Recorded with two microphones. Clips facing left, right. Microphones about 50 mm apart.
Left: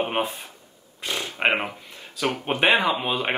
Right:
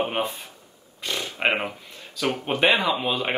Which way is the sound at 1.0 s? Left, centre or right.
Centre.